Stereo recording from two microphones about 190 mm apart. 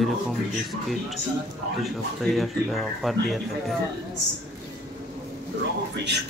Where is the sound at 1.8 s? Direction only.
Centre (ahead or behind).